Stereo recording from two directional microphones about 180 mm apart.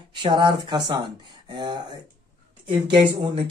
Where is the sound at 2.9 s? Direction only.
25° right (ahead or behind).